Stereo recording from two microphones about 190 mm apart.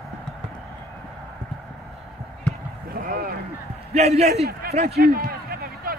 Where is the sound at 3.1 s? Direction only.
50° right (ahead or behind).